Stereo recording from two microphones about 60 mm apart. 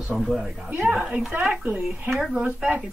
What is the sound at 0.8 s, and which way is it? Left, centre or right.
Speech, centre.